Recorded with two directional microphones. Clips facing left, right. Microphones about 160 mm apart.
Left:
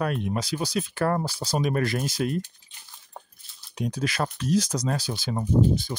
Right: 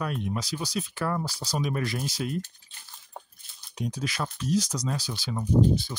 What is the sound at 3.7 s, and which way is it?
Speech, 65° left (ahead or behind).